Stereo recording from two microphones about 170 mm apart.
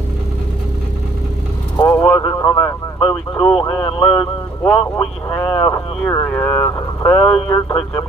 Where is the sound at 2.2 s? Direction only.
20° left (ahead or behind).